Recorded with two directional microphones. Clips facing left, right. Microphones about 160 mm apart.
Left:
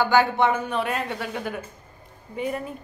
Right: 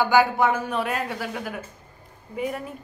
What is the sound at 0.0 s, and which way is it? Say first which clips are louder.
A woman's voice: even; 10° right (ahead or behind).